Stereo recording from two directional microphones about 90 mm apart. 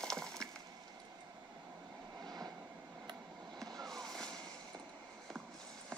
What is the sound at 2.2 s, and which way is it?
Vehicle, 45° right (ahead or behind).